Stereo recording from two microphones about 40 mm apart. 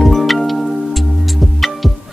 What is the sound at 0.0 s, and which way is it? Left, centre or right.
Music, centre.